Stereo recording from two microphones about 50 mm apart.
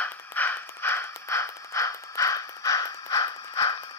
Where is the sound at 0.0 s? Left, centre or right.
Left.